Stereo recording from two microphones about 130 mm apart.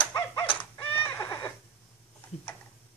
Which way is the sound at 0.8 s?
15° left (ahead or behind).